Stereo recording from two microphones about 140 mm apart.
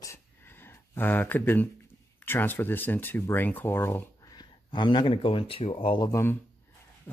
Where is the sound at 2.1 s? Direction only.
15° left (ahead or behind); by 6.1 s 35° left (ahead or behind).